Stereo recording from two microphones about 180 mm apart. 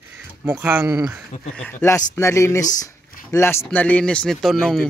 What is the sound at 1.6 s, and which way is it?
A man's voice, 10° left (ahead or behind).